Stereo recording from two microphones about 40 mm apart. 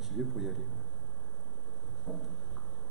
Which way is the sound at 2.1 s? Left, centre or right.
Left.